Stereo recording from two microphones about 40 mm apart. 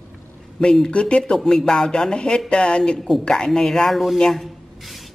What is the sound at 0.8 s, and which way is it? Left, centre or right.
A woman's voice, left.